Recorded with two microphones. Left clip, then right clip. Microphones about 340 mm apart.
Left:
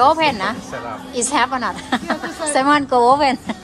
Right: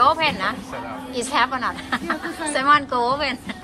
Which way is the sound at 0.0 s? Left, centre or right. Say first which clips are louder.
Left 3 dB; centre.